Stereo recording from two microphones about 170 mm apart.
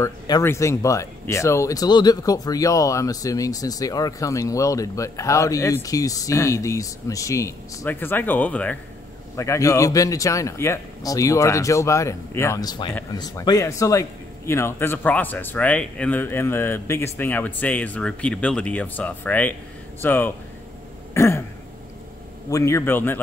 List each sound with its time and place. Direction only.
0.0 s a man's voice: 15° left (ahead or behind)
21.1 s throat clearing: 15° left (ahead or behind)
22.5 s a man's voice: 15° left (ahead or behind)